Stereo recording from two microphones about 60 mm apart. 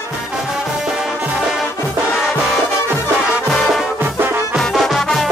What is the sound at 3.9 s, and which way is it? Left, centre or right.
Music, right.